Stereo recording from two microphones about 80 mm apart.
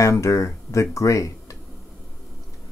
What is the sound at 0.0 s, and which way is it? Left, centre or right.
Speech, left.